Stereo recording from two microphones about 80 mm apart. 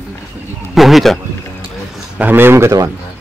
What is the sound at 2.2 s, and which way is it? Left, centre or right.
Speech, right.